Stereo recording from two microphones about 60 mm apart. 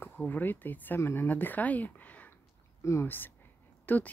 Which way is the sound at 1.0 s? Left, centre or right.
Left.